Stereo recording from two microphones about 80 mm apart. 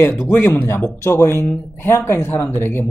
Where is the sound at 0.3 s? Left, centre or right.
Left.